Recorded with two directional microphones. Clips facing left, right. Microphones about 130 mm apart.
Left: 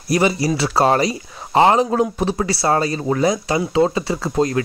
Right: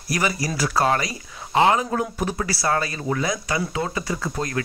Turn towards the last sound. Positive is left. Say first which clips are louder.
# left 7 dB
turn(degrees=30)  # may be behind; listen again after turning